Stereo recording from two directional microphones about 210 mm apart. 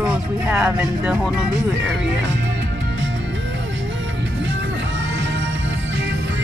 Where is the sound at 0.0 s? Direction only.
5° right (ahead or behind).